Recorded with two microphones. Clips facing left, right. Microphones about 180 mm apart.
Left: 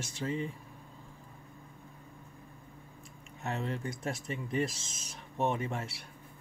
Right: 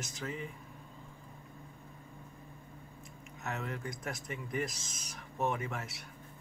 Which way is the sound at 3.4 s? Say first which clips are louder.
Left 4 dB; 30° left (ahead or behind).